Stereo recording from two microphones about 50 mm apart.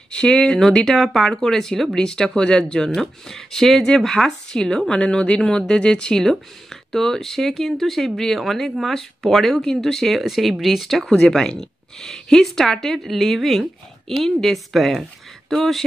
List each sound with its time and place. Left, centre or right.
0.1 s speech: centre